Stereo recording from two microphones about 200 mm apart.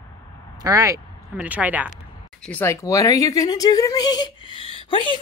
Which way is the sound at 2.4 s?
10° left (ahead or behind).